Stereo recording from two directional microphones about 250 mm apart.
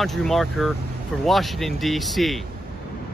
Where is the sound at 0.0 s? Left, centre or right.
Centre.